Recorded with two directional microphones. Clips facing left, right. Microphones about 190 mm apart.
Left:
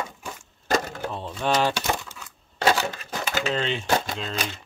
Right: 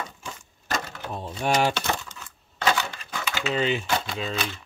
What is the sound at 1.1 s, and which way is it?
Speech, 10° right (ahead or behind).